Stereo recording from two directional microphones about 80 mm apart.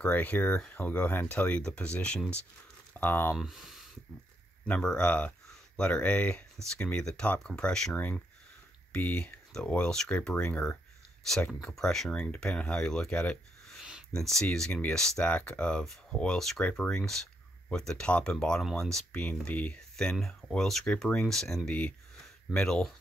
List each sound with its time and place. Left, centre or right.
0.0 s speech: centre
3.3 s speech: centre
4.6 s speech: centre
7.9 s speech: centre
11.6 s speech: centre
19.2 s speech: centre
20.0 s speech: centre